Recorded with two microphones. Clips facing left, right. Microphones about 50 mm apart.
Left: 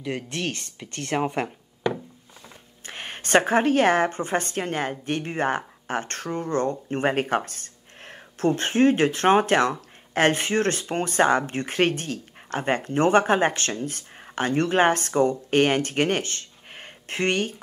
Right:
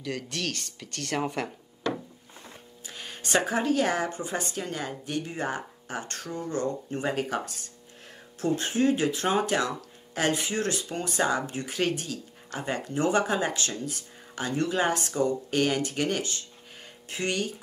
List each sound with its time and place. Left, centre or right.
0.0 s speech: left
2.8 s a woman's voice: left